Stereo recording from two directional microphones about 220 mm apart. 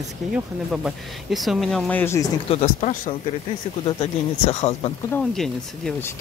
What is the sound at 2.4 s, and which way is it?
Speech, 30° left (ahead or behind).